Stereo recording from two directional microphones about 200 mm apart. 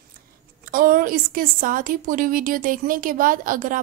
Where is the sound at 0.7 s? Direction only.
45° right (ahead or behind).